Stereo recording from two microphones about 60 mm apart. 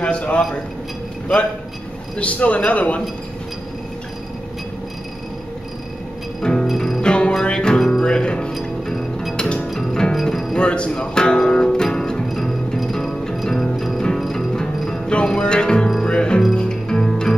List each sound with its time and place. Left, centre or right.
0.0 s a sound: centre
2.1 s a man's voice: left
6.4 s music: centre
6.7 s music: centre
7.0 s music: centre
10.5 s music: centre
14.5 s music: centre